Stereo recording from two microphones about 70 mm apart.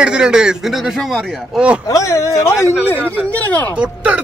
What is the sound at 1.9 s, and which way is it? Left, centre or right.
Speech, left.